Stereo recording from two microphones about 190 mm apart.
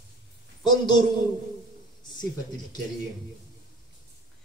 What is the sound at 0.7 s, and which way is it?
Speech, 25° left (ahead or behind).